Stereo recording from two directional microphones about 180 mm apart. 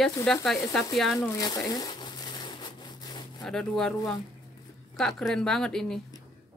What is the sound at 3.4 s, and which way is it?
Speech, 5° left (ahead or behind).